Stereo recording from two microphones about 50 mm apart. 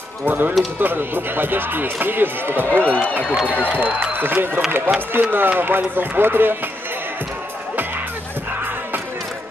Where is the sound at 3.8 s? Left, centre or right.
Right.